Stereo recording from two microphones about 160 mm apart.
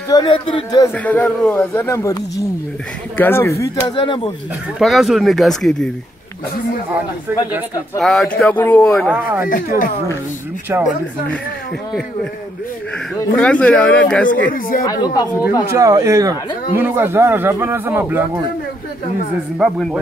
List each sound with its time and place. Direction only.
0.1 s speech: 30° left (ahead or behind)
0.9 s speech: 10° left (ahead or behind)
3.2 s speech: 15° left (ahead or behind); by 4.3 s 30° left (ahead or behind)
4.7 s speech: centre (ahead or behind)
8.0 s speech: centre (ahead or behind)
9.1 s a man's voice: 15° right (ahead or behind)
9.5 s speech: 60° left (ahead or behind)
13.3 s speech: 5° left (ahead or behind)
14.3 s speech: 60° left (ahead or behind)
14.9 s speech: 25° left (ahead or behind)
15.7 s a man's voice: 20° right (ahead or behind)
19.6 s speech: centre (ahead or behind)